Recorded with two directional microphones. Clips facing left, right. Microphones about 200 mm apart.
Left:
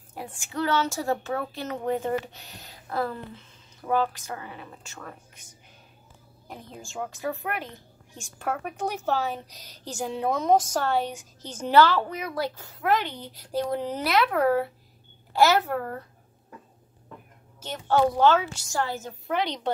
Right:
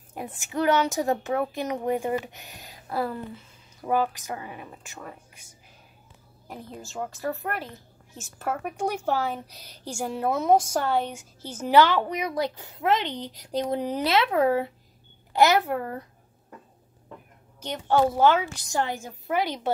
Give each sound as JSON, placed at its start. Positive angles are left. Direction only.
{"t": 0.2, "sound": "speech", "side_deg": -20}
{"t": 6.4, "sound": "a woman's voice", "side_deg": -5}
{"t": 17.6, "sound": "speech", "side_deg": -15}
{"t": 19.2, "sound": "a woman's voice", "side_deg": -5}